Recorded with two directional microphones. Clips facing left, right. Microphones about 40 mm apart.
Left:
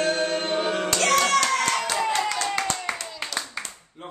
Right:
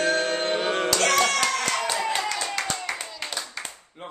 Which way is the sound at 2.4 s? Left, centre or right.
Centre.